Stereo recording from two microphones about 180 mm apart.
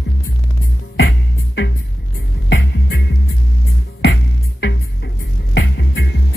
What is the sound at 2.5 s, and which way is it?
Music, 70° left (ahead or behind).